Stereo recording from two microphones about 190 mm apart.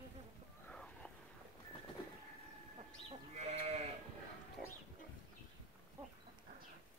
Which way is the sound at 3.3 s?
35° right (ahead or behind).